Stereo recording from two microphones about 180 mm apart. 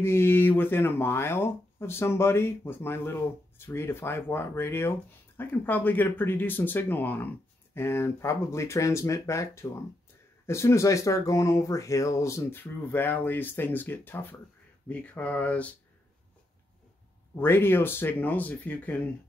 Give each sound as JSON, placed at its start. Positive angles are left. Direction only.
{"t": 0.0, "sound": "speech", "side_deg": 15}
{"t": 17.4, "sound": "speech", "side_deg": 10}